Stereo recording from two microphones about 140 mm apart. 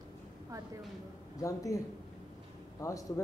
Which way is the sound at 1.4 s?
25° left (ahead or behind).